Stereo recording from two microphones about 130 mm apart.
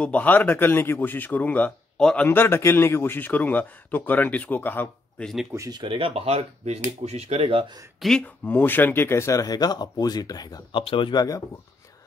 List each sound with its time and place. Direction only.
0.0 s a man's voice: 10° left (ahead or behind)
5.5 s speech: 25° right (ahead or behind)
5.8 s speech: 40° right (ahead or behind)
8.0 s speech: 5° left (ahead or behind); by 10.8 s 30° left (ahead or behind)
10.8 s speech: 45° left (ahead or behind)